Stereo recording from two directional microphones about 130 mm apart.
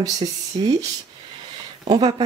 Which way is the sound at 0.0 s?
30° right (ahead or behind).